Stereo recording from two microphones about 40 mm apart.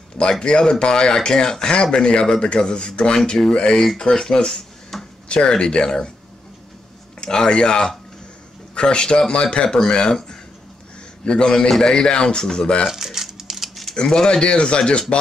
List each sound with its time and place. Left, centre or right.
0.2 s speech: left
4.9 s a sound: centre
5.3 s speech: left
7.2 s speech: left
11.2 s speech: left
12.9 s a sound: centre
13.9 s speech: centre